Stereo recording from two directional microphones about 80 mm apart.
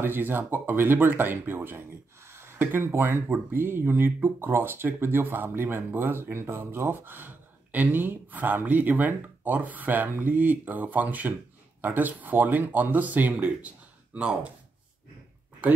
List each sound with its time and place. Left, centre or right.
0.0 s speech: right